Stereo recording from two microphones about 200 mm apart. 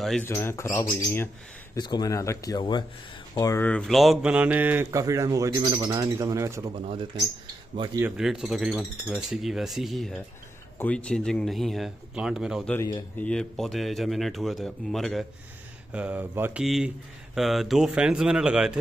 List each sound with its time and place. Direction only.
0.0 s speech: centre (ahead or behind)
0.3 s speech: 15° left (ahead or behind); by 6.7 s 15° right (ahead or behind)
6.8 s speech: 25° right (ahead or behind)
8.0 s speech: centre (ahead or behind)
12.7 s speech: 15° left (ahead or behind)
13.2 s speech: 5° left (ahead or behind)